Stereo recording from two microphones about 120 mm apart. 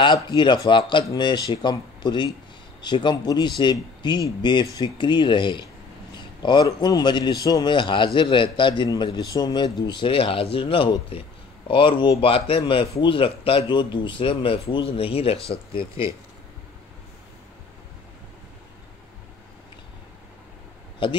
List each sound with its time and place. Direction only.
0.0 s a man's voice: 40° left (ahead or behind)
21.0 s a man's voice: 45° left (ahead or behind)